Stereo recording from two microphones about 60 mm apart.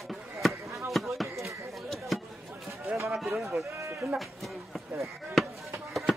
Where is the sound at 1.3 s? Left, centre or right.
Right.